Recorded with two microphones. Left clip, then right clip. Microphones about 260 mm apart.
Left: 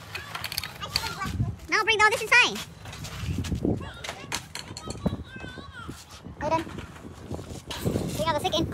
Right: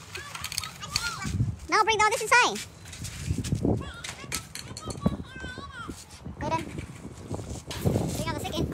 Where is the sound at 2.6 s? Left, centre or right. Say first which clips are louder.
Left 2 dB; centre.